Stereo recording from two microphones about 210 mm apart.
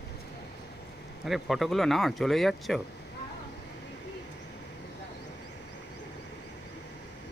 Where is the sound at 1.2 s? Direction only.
Centre (ahead or behind).